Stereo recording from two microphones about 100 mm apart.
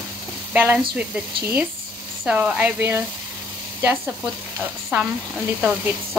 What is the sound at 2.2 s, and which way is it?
Speech, 15° right (ahead or behind).